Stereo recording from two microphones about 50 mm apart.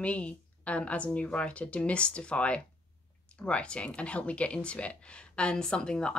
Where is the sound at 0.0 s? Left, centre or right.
Left.